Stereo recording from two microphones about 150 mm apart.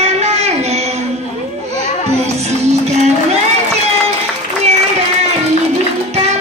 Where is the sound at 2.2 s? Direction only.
45° right (ahead or behind).